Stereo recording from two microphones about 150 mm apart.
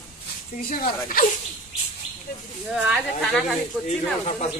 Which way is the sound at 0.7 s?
70° left (ahead or behind).